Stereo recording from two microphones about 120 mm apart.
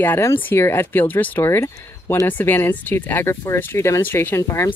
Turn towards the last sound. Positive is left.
turn(degrees=25)  # may be behind; listen again after turning